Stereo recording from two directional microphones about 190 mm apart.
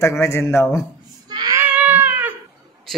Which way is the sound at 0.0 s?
15° left (ahead or behind).